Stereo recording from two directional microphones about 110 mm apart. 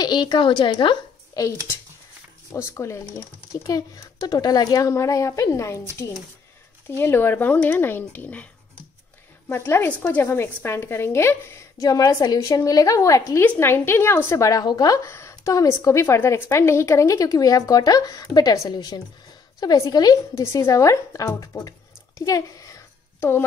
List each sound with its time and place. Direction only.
0.0 s a woman's voice: 40° left (ahead or behind)
2.5 s a woman's voice: 25° left (ahead or behind)
9.5 s a woman's voice: 20° left (ahead or behind)